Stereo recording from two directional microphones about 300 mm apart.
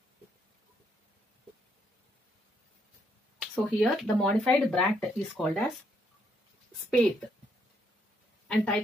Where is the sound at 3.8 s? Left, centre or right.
Centre.